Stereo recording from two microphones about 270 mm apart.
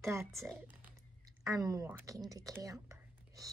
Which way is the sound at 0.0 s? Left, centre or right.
Centre.